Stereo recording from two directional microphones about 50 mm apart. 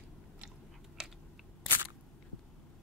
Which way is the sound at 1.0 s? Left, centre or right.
Centre.